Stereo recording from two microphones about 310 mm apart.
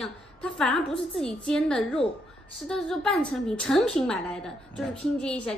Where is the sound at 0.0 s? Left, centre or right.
Centre.